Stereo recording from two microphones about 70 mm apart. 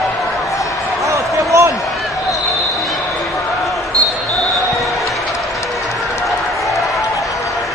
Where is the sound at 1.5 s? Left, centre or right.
Right.